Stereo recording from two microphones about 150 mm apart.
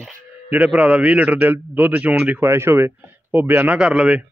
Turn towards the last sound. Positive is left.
turn(degrees=-5)  # may be behind; listen again after turning